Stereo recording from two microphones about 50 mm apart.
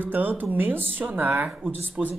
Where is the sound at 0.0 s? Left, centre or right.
Right.